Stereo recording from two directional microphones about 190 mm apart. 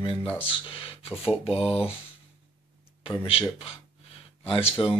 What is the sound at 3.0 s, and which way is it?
Speech, 30° left (ahead or behind).